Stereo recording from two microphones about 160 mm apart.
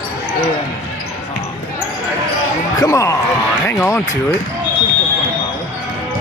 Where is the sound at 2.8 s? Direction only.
20° left (ahead or behind).